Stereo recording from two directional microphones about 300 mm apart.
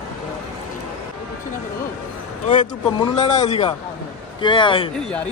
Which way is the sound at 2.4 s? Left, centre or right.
Centre.